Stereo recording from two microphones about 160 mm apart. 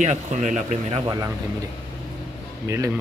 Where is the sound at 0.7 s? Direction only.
35° right (ahead or behind).